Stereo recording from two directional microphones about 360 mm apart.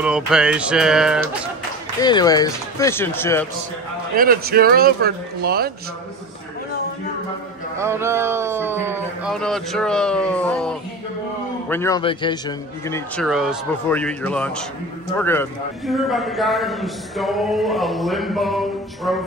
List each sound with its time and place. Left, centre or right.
0.0 s speech: centre
2.0 s speech: centre
4.2 s speech: right
7.7 s a man's voice: centre